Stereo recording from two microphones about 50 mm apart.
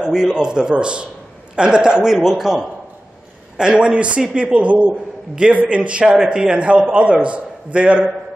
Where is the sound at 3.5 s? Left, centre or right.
Centre.